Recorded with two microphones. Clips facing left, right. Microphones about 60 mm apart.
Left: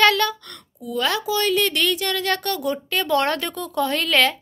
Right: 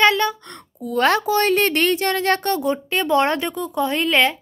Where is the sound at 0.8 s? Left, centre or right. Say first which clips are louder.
Right 5 dB; right.